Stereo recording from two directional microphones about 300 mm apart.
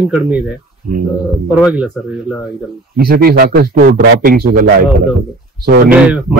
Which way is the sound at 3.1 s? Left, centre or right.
Right.